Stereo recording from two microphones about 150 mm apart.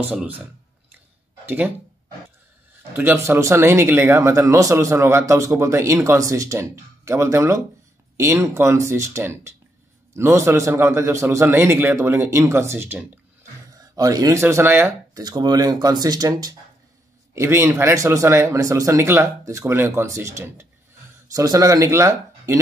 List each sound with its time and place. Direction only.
0.0 s a man's voice: 5° right (ahead or behind)
1.4 s speech: 15° right (ahead or behind)
3.0 s a man's voice: 15° right (ahead or behind)
15.2 s speech: 25° right (ahead or behind)